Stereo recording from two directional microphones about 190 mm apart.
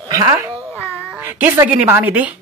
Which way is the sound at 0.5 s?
10° left (ahead or behind).